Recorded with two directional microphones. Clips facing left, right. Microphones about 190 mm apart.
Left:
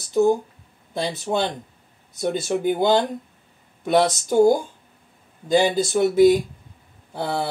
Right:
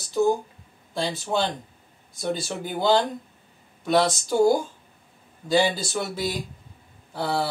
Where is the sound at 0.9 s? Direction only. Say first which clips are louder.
Left 2 dB; 20° left (ahead or behind).